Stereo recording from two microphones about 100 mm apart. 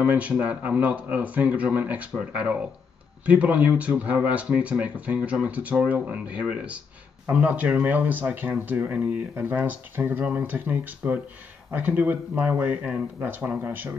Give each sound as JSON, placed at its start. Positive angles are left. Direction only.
{"t": 0.0, "sound": "speech", "side_deg": -15}